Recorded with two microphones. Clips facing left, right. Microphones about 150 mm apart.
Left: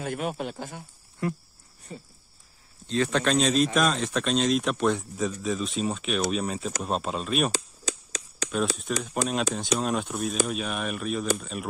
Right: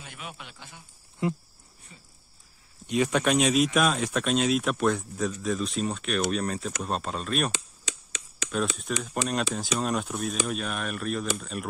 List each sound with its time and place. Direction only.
0.0 s speech: 45° left (ahead or behind)
1.2 s speech: 20° right (ahead or behind)
1.9 s speech: 40° left (ahead or behind)
2.9 s a man's voice: 10° right (ahead or behind)
7.5 s chop: 40° left (ahead or behind)
8.9 s a man's voice: centre (ahead or behind)